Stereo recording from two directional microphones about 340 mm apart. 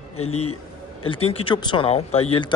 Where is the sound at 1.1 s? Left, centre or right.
Centre.